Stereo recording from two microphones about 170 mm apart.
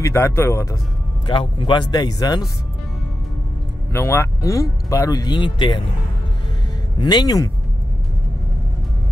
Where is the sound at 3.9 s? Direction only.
15° left (ahead or behind).